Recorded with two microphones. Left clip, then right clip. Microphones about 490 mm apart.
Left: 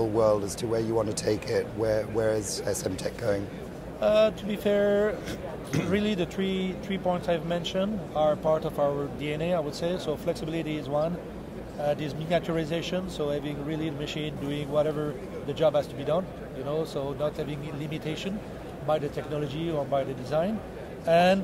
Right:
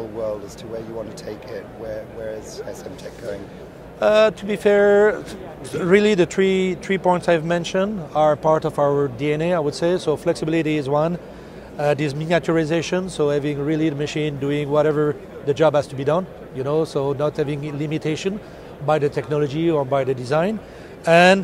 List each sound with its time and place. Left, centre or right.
0.2 s speech: left
4.0 s speech: right